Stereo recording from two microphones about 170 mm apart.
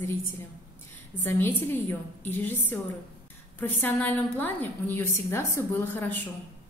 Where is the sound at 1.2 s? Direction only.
15° left (ahead or behind).